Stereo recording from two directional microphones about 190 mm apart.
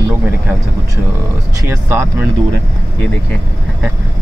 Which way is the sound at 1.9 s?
10° right (ahead or behind).